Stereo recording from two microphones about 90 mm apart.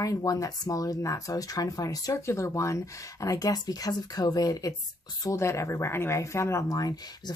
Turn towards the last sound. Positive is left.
turn(degrees=45)  # may be behind; listen again after turning